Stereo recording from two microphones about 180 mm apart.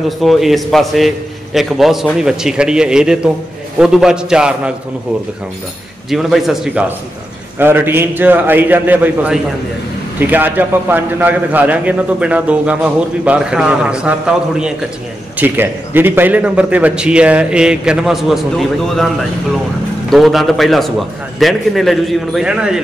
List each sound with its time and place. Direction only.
0.2 s a man's voice: centre (ahead or behind)
6.0 s a man's voice: centre (ahead or behind)
20.1 s a man's voice: centre (ahead or behind)